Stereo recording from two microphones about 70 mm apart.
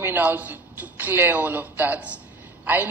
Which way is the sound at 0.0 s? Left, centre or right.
Right.